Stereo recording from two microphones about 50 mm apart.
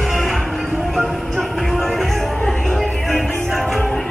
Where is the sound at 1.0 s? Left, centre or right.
Centre.